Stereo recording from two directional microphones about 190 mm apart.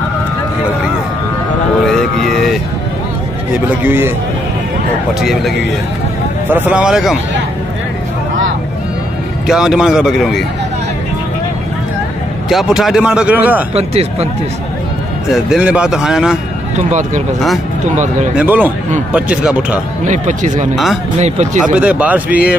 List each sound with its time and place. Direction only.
1.9 s vehicle: centre (ahead or behind)
3.5 s speech: 10° right (ahead or behind)
5.2 s speech: centre (ahead or behind)
6.5 s speech: 5° right (ahead or behind)
9.5 s speech: 5° right (ahead or behind)
12.4 s speech: centre (ahead or behind)
15.3 s speech: 5° right (ahead or behind)
18.4 s speech: 10° right (ahead or behind)
20.1 s speech: 40° right (ahead or behind)
20.7 s speech: centre (ahead or behind)
21.2 s speech: 35° right (ahead or behind)
21.7 s speech: 5° right (ahead or behind)